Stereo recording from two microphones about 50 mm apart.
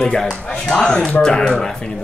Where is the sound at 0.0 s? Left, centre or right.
Centre.